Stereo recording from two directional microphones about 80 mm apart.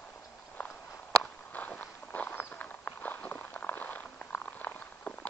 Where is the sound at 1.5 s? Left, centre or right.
Centre.